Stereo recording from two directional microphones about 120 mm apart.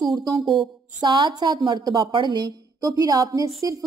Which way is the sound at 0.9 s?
40° right (ahead or behind).